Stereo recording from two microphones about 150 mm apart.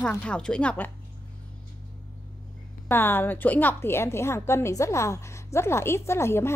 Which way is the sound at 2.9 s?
15° left (ahead or behind).